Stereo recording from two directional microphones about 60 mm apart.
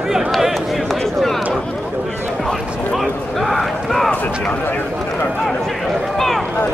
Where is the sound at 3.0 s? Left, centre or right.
Centre.